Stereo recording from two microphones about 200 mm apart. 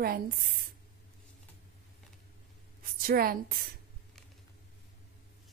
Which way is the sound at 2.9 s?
50° right (ahead or behind).